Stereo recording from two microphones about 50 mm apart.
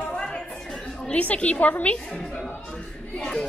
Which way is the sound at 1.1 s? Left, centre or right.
Left.